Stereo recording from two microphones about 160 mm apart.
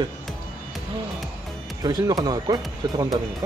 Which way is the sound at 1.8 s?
25° right (ahead or behind).